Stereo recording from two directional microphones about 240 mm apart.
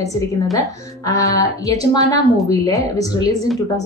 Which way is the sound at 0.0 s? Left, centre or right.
Centre.